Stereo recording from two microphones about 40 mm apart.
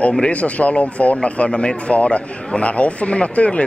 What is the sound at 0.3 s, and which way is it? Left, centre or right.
Speech, left.